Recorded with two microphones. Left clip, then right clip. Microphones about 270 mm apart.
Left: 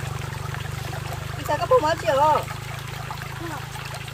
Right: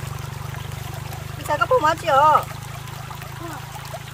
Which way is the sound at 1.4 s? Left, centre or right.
Right.